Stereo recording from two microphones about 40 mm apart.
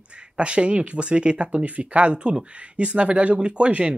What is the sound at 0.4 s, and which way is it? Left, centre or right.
Speech, right.